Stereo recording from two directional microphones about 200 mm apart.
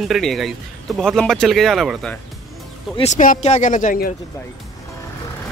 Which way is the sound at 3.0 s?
35° left (ahead or behind).